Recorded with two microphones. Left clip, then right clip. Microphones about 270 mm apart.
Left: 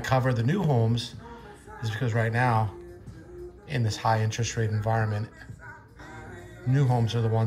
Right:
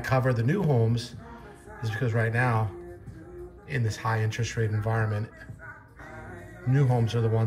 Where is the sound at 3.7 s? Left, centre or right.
Centre.